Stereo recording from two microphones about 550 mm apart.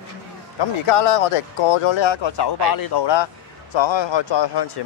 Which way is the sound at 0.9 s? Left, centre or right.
Left.